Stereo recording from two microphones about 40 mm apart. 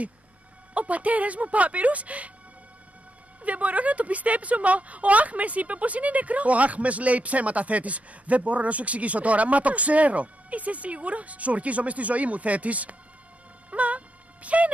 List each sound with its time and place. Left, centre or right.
0.7 s a woman's voice: right
3.4 s a woman's voice: right
13.7 s music: right